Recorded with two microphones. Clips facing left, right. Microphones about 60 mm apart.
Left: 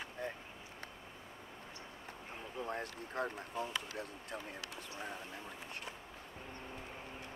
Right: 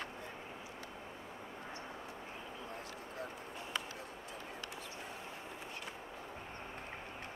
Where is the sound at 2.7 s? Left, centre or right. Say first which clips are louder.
Left 4 dB; left.